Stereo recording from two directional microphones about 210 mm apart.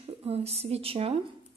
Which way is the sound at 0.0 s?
30° right (ahead or behind).